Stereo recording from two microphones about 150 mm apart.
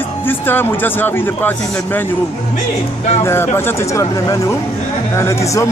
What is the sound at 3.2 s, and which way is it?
Speech, 15° left (ahead or behind).